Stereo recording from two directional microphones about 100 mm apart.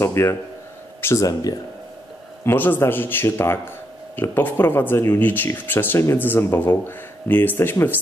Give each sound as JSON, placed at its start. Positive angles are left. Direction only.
{"t": 0.0, "sound": "a man's voice", "side_deg": 25}
{"t": 2.4, "sound": "speech", "side_deg": 20}